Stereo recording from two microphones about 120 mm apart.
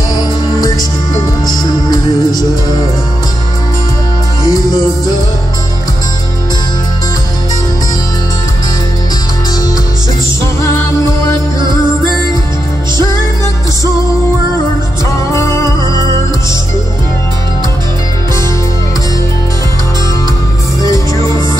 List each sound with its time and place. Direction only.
0.5 s music: 35° left (ahead or behind)
4.5 s music: 30° left (ahead or behind)
10.6 s music: 25° left (ahead or behind)
15.3 s music: 25° left (ahead or behind)